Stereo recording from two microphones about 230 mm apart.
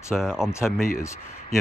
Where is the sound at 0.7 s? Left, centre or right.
Left.